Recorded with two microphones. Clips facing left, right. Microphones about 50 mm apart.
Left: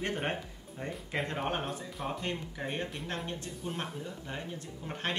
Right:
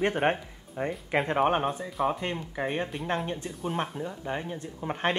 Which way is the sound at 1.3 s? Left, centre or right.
Right.